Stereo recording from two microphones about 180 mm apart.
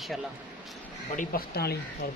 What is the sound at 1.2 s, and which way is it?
Speech, 55° left (ahead or behind).